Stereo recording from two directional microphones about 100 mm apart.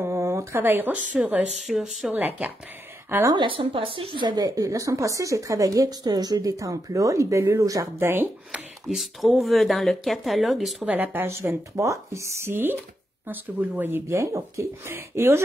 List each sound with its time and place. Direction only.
0.0 s a sound: 30° right (ahead or behind)
1.1 s speech: 5° right (ahead or behind)
2.1 s speech: 15° right (ahead or behind)
3.4 s a woman's voice: 60° right (ahead or behind); by 8.1 s 35° right (ahead or behind)
8.1 s speech: 20° right (ahead or behind)
8.5 s speech: 5° right (ahead or behind)
10.8 s speech: 15° right (ahead or behind)